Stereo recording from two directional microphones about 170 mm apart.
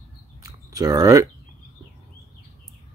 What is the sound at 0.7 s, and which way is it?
Speech, 20° right (ahead or behind).